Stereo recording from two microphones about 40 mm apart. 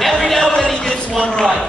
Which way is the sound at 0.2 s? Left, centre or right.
Centre.